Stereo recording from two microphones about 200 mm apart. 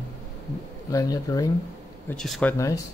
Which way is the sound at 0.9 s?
20° left (ahead or behind).